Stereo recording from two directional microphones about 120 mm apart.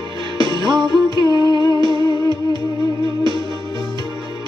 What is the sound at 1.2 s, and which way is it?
Music, 30° left (ahead or behind).